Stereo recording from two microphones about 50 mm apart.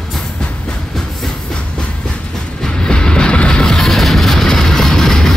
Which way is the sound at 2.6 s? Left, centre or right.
Centre.